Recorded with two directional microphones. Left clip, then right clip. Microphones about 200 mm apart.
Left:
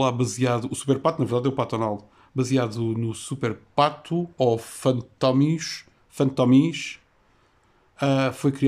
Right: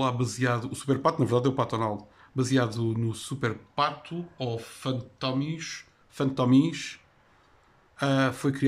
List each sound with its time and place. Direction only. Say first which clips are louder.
0.0 s speech: left 4 dB; 15° left (ahead or behind)
4.0 s speech: left 12 dB; 30° left (ahead or behind); by 8.6 s 10° left (ahead or behind)